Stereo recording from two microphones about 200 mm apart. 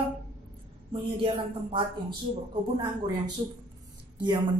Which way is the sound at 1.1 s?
25° right (ahead or behind).